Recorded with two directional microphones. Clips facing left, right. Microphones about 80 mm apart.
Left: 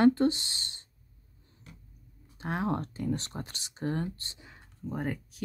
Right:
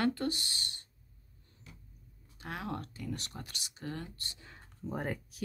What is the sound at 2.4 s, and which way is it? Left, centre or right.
Speech, left.